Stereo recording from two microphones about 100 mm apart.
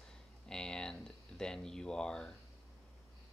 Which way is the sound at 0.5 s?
5° left (ahead or behind).